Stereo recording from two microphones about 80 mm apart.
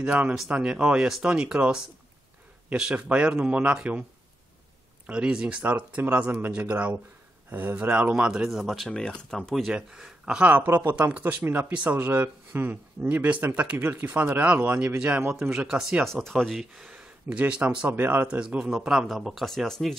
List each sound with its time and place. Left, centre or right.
0.0 s speech: centre
5.0 s speech: centre
9.7 s speech: centre
10.5 s speech: right; by 16.1 s centre
16.1 s speech: centre
16.7 s speech: centre